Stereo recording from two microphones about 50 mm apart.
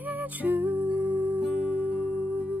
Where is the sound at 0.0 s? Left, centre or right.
Right.